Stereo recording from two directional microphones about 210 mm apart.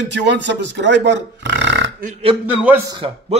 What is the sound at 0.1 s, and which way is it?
A man's voice, 55° right (ahead or behind).